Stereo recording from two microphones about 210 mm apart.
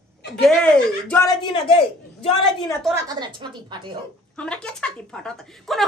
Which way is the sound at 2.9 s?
20° right (ahead or behind).